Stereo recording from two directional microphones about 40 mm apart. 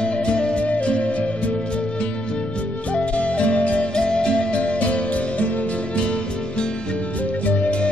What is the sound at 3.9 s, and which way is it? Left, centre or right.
Music, left.